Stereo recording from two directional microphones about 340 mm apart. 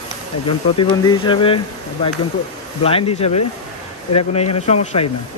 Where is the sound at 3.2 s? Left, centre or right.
Centre.